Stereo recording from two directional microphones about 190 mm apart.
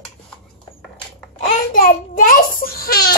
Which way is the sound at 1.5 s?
45° left (ahead or behind).